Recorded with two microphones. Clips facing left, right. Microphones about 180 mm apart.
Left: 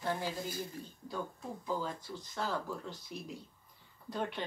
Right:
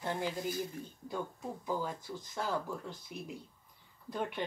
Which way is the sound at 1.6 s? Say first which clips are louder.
Even; 10° right (ahead or behind).